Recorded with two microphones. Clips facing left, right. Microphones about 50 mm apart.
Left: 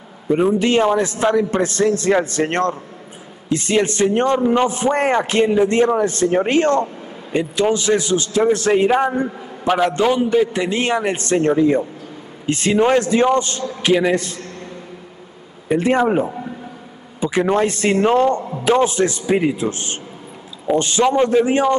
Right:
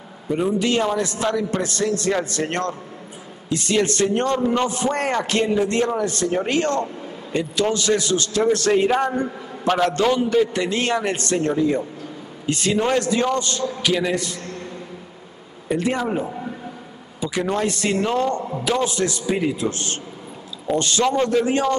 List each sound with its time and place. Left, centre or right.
0.3 s a man's voice: left
15.7 s a man's voice: left